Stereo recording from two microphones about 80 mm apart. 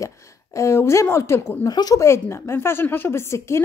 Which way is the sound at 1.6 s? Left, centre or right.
Left.